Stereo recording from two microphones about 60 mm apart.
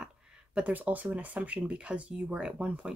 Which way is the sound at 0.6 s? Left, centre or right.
Right.